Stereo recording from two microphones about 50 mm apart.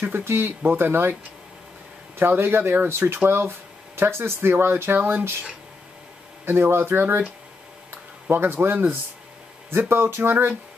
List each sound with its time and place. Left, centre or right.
0.0 s speech: right
2.1 s speech: right
6.4 s speech: right
8.3 s speech: right